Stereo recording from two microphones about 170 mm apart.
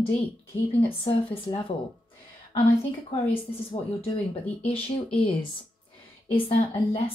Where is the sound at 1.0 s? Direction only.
30° left (ahead or behind).